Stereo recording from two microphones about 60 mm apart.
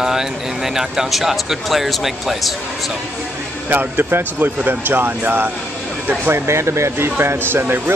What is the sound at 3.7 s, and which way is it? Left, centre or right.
Speech, right.